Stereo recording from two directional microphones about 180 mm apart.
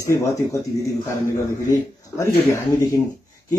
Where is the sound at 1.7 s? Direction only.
15° left (ahead or behind).